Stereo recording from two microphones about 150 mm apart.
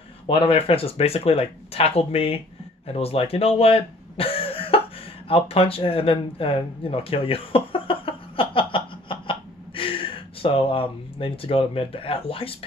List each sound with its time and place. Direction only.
0.3 s speech: 35° left (ahead or behind)